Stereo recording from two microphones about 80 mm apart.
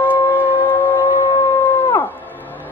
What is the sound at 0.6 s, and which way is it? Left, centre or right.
Civil defense siren, left.